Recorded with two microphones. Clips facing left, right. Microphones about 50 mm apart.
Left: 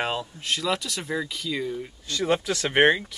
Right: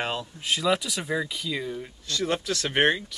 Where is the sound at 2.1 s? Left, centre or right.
Centre.